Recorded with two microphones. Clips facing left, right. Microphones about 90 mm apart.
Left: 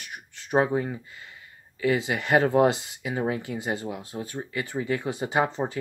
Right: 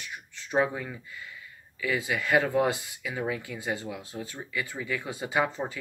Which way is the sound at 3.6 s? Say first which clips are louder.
Left 3 dB; 20° left (ahead or behind).